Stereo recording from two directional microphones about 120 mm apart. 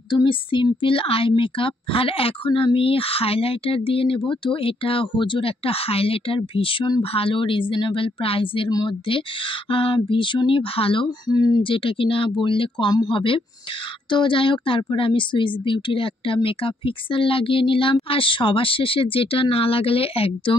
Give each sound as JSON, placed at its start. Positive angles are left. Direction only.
{"t": 0.1, "sound": "speech", "side_deg": 40}